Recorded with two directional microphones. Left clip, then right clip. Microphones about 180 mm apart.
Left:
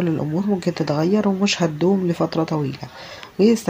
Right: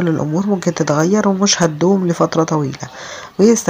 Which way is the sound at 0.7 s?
25° right (ahead or behind).